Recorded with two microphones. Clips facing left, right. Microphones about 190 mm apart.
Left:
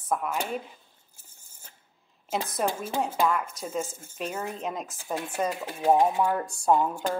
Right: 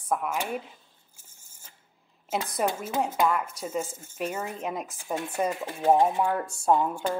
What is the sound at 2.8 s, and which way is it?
Speech, 30° left (ahead or behind).